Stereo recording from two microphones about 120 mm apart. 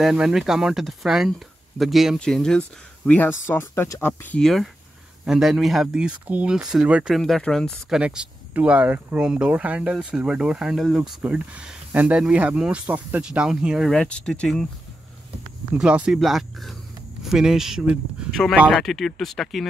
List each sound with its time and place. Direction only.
0.0 s speech: 5° right (ahead or behind)
3.1 s speech: 15° left (ahead or behind)
4.4 s speech: 5° left (ahead or behind)
7.2 s speech: 5° left (ahead or behind)
7.9 s speech: 5° right (ahead or behind)
15.7 s speech: 10° right (ahead or behind)